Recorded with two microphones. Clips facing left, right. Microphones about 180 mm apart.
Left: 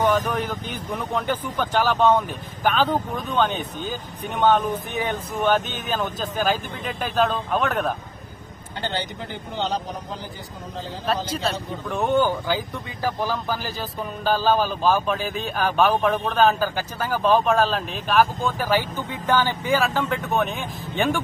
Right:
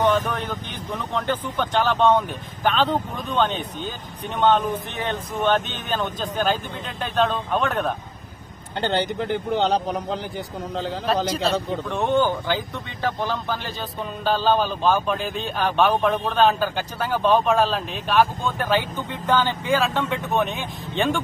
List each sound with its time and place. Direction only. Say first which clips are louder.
0.0 s a man's voice: even; 10° left (ahead or behind)
8.8 s speech: right 6 dB; 60° right (ahead or behind)
11.1 s a man's voice: right 2 dB; centre (ahead or behind)